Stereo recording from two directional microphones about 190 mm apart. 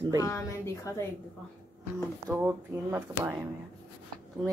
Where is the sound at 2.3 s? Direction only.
10° right (ahead or behind).